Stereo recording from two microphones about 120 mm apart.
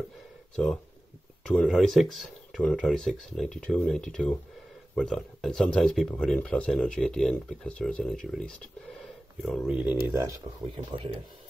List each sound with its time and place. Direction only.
1.4 s speech: 5° left (ahead or behind)
9.8 s speech: 15° right (ahead or behind)
10.7 s speech: 50° right (ahead or behind)